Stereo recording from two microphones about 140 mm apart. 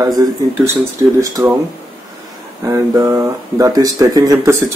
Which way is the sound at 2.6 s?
20° right (ahead or behind).